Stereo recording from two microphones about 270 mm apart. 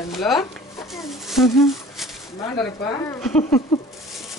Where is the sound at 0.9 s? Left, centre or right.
Centre.